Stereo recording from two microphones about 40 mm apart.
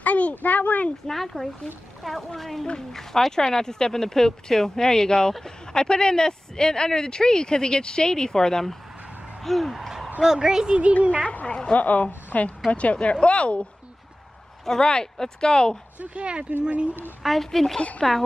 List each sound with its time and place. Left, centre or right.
0.0 s a child's voice: left
1.0 s a woman's voice: centre
9.4 s a sound: centre
10.2 s speech: centre
11.2 s a woman's voice: left
14.8 s speech: left
16.2 s speech: right
17.2 s a woman's voice: centre